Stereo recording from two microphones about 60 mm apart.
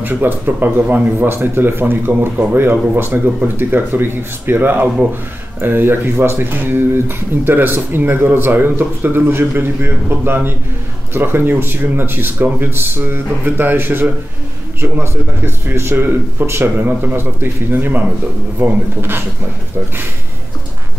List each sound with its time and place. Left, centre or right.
0.0 s speech: right